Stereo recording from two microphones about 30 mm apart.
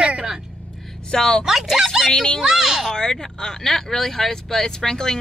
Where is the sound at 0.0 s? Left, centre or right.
Right.